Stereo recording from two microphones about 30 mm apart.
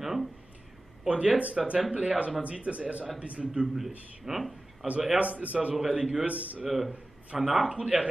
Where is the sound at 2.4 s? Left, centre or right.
Right.